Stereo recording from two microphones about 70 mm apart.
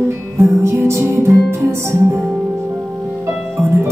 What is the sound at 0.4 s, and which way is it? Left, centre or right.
Music, right.